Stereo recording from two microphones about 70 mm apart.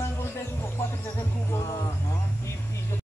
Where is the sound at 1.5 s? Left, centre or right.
Left.